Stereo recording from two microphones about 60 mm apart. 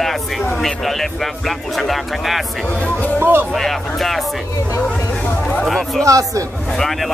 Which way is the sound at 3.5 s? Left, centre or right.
Centre.